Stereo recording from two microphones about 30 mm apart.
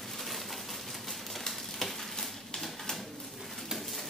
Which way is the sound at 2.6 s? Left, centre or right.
Centre.